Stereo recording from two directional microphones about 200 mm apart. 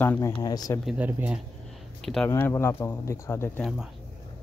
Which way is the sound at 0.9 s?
10° right (ahead or behind).